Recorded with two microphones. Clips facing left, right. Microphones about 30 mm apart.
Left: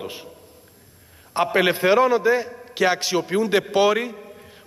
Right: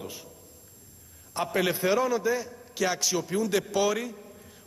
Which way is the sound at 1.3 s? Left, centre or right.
Left.